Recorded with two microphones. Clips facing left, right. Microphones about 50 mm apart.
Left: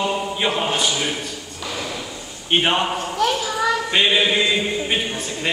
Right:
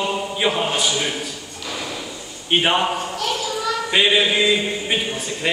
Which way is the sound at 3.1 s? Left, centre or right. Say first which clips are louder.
Left 4 dB; left.